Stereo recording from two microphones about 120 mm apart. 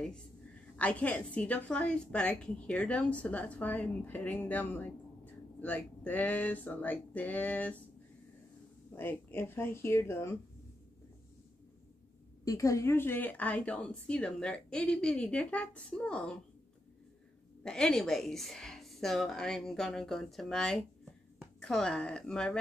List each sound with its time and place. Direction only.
0.0 s a woman's voice: 5° left (ahead or behind)
8.9 s speech: 20° left (ahead or behind)
12.4 s a woman's voice: 25° left (ahead or behind); by 16.3 s 10° left (ahead or behind)
17.6 s a woman's voice: 5° left (ahead or behind)